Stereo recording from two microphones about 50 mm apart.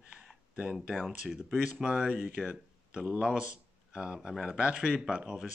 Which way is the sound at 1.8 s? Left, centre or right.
Centre.